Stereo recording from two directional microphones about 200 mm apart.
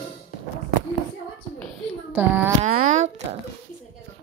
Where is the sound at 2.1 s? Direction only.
10° right (ahead or behind).